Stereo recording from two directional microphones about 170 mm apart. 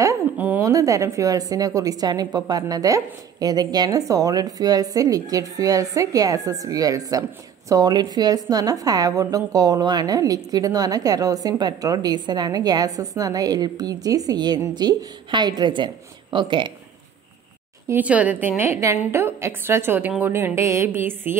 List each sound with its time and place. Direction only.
0.0 s a sound: 15° right (ahead or behind)
0.7 s a woman's voice: 20° right (ahead or behind)
17.8 s a woman's voice: 10° right (ahead or behind)